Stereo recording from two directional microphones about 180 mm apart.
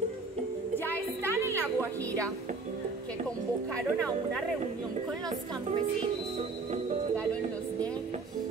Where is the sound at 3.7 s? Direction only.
5° left (ahead or behind).